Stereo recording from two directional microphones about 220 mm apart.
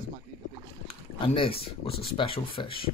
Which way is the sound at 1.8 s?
25° left (ahead or behind).